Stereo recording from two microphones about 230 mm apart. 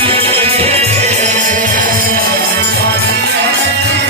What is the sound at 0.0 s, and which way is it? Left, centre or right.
Music, right.